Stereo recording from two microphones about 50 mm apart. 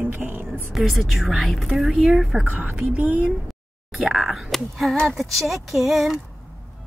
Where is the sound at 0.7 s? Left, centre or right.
Centre.